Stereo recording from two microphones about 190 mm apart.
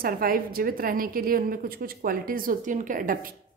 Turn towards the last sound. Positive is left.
turn(degrees=-45)  # may be behind; listen again after turning